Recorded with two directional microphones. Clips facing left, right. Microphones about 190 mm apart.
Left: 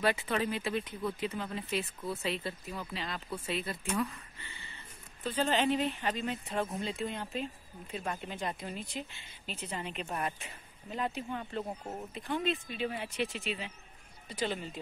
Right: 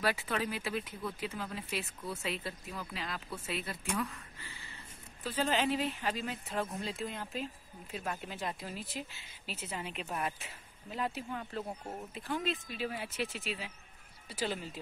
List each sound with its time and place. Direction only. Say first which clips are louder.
0.0 s speech: left 3 dB; centre (ahead or behind)